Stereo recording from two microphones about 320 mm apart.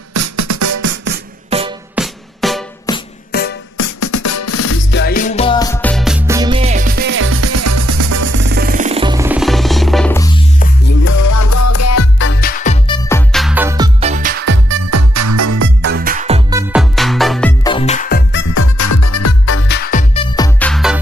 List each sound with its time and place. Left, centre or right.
0.1 s music: right
1.5 s music: centre
2.0 s music: centre
2.9 s music: centre
3.3 s music: left
3.8 s music: left
4.9 s music: left; by 8.4 s right
8.4 s music: right; by 10.4 s centre
11.1 s music: left; by 13.2 s centre
13.3 s music: centre; by 14.8 s right
14.9 s music: right
15.8 s music: right; by 18.4 s left
18.5 s music: left
20.3 s music: centre